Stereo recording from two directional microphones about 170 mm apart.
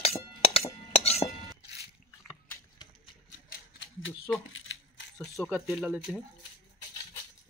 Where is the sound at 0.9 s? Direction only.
35° left (ahead or behind).